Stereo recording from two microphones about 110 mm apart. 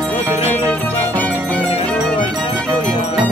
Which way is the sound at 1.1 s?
15° left (ahead or behind).